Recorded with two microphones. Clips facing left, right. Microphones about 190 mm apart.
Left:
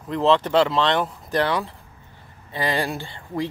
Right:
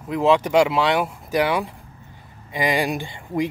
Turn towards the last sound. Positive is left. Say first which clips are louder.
# right 3 dB
turn(degrees=-15)  # may be behind; listen again after turning